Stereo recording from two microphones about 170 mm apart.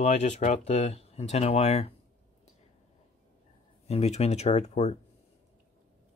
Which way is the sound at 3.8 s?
40° left (ahead or behind).